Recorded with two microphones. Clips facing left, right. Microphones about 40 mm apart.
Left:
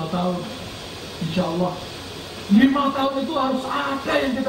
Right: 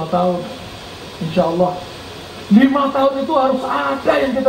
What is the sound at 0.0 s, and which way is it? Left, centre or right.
Speech, centre.